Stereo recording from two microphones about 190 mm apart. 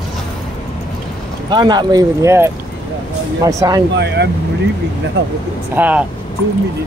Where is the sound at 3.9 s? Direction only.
60° right (ahead or behind).